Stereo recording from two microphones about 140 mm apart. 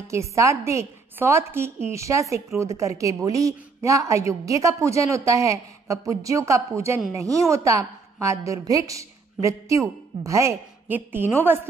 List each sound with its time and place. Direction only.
0.1 s a woman's voice: 20° right (ahead or behind)